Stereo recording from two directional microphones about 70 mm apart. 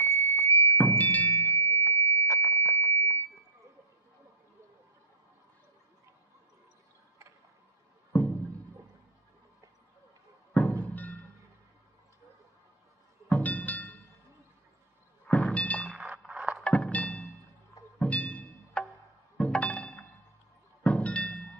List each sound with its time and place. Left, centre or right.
0.0 s music: left
0.7 s music: left
1.5 s music: left
2.2 s alarm: left
2.5 s alarm: left
8.1 s music: left
10.5 s music: left
13.3 s music: left
15.2 s music: centre
15.9 s clang: centre
16.3 s music: centre
16.6 s music: centre